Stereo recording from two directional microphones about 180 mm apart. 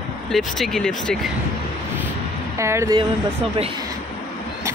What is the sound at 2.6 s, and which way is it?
Speech, 15° right (ahead or behind).